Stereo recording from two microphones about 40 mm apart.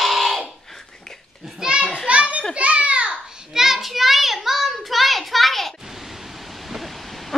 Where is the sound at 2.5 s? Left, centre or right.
Right.